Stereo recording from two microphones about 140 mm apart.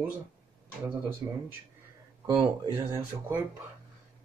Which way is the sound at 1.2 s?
20° right (ahead or behind).